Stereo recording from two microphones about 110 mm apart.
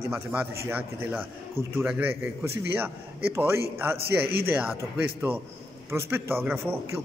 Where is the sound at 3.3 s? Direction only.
20° right (ahead or behind).